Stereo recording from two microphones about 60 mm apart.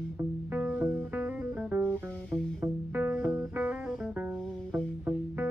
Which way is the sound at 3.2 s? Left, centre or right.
Right.